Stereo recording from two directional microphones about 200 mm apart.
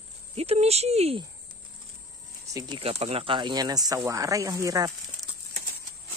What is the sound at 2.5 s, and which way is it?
Speech, 20° right (ahead or behind).